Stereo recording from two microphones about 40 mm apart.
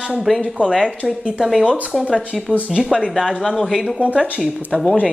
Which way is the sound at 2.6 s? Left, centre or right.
Right.